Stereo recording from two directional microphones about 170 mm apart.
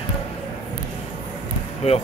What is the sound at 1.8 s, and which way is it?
Speech, 35° left (ahead or behind).